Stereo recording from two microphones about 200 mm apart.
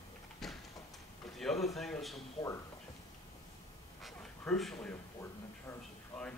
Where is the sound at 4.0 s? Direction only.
Centre (ahead or behind).